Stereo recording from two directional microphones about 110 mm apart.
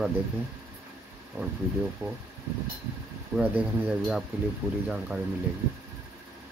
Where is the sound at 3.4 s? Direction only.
15° right (ahead or behind).